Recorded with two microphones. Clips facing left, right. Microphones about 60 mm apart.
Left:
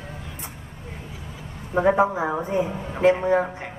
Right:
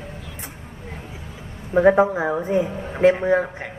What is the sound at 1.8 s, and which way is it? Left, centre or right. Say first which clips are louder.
Speech: right 4 dB; centre.